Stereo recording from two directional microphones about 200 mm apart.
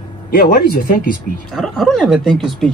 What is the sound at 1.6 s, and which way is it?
Speech, centre (ahead or behind).